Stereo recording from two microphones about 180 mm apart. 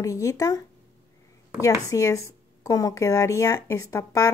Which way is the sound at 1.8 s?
15° left (ahead or behind).